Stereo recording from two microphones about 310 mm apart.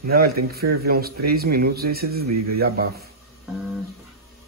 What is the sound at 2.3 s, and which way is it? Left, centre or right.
Speech, right.